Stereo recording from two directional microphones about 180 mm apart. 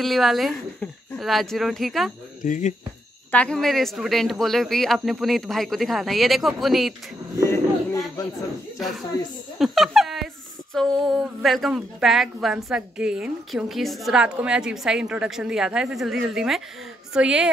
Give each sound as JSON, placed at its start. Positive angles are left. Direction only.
{"t": 0.0, "sound": "a woman's voice", "side_deg": 0}
{"t": 2.4, "sound": "speech", "side_deg": 45}
{"t": 3.3, "sound": "a woman's voice", "side_deg": 5}
{"t": 7.4, "sound": "a sound", "side_deg": 15}
{"t": 8.7, "sound": "a woman's voice", "side_deg": 0}